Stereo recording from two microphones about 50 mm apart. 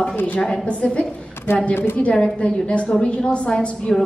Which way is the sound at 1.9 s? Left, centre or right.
Centre.